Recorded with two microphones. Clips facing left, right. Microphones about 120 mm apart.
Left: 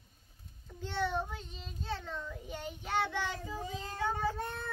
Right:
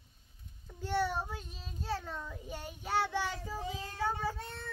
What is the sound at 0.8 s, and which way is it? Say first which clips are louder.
Child singing: right 1 dB; 10° right (ahead or behind).